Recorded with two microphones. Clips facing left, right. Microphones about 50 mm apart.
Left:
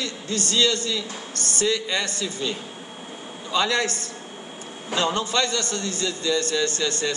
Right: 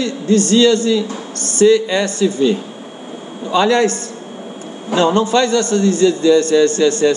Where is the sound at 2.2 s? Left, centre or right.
Right.